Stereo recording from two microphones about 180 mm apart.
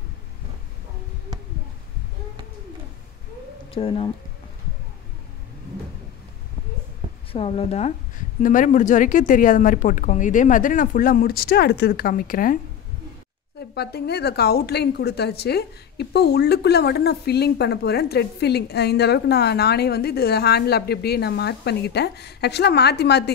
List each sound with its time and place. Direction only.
3.7 s speech: 30° left (ahead or behind)
7.3 s speech: 35° left (ahead or behind)
8.4 s speech: 45° left (ahead or behind)
13.6 s a woman's voice: 65° left (ahead or behind)